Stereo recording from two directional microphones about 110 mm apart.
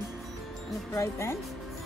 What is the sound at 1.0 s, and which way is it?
Speech, 25° left (ahead or behind).